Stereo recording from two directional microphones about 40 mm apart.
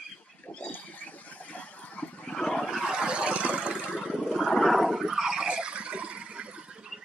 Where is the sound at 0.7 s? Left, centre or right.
Left.